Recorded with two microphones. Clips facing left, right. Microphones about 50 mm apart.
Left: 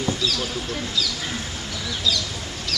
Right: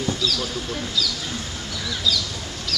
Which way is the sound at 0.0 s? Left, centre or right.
Centre.